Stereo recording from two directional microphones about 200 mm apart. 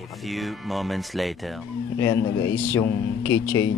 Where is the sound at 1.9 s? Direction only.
15° left (ahead or behind).